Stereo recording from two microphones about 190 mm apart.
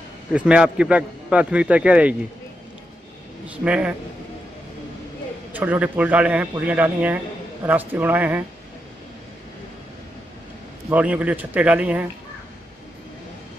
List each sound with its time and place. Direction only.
0.5 s a man's voice: 5° right (ahead or behind)
3.4 s a man's voice: 5° right (ahead or behind)
5.5 s a man's voice: 10° right (ahead or behind)
10.9 s a man's voice: 10° right (ahead or behind)